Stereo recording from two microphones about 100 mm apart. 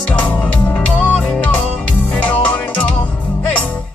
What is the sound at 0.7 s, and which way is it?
Music, 15° left (ahead or behind).